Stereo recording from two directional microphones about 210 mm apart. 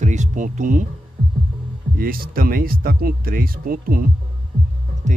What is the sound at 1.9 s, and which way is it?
Speech, 45° right (ahead or behind).